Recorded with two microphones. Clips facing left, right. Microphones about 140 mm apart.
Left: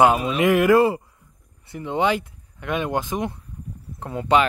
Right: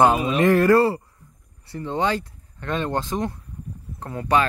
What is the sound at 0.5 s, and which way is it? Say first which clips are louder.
Speech: left 1 dB; 15° left (ahead or behind).